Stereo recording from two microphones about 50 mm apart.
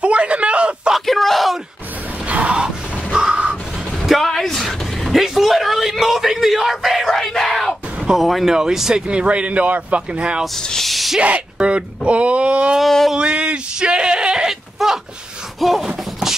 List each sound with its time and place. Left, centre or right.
0.0 s a sound: right
0.9 s yell: centre
2.2 s music: right
2.6 s a sound: centre
4.0 s vehicle: centre
7.1 s crowd: centre
8.1 s speech: centre
8.5 s speech: centre
10.4 s snake: centre
11.1 s speech: right
13.1 s a sound: centre